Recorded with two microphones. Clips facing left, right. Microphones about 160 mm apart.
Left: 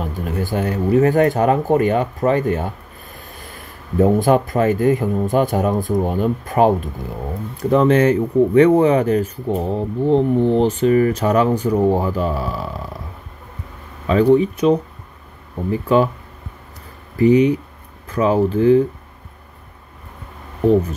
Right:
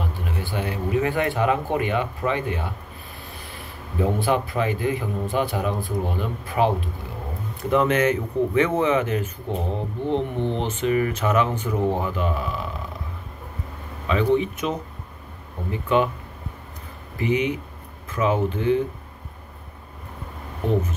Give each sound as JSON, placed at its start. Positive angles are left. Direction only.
{"t": 0.0, "sound": "speech", "side_deg": 45}
{"t": 7.7, "sound": "speech", "side_deg": 35}
{"t": 14.0, "sound": "speech", "side_deg": 40}
{"t": 17.2, "sound": "speech", "side_deg": 35}